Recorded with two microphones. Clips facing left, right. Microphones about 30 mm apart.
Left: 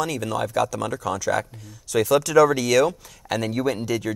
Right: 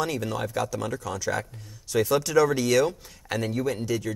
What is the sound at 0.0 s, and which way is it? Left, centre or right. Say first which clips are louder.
Speech: left 2 dB; left.